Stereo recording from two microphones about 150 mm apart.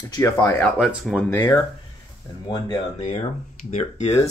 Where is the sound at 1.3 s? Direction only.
15° left (ahead or behind).